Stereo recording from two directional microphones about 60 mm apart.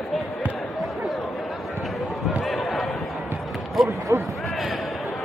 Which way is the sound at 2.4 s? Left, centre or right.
Centre.